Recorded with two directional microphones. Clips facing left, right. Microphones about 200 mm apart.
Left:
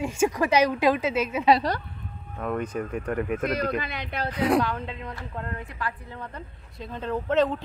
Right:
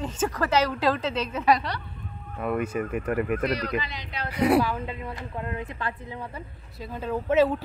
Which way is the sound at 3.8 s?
55° left (ahead or behind).